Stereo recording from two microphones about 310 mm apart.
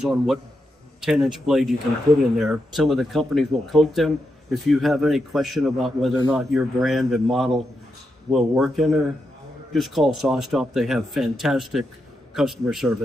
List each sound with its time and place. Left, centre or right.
0.0 s speech: centre